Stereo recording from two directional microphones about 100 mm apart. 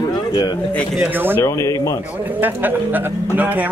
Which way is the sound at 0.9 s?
15° right (ahead or behind).